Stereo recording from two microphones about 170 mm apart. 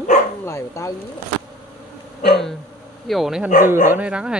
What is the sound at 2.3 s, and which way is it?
Speech, centre (ahead or behind).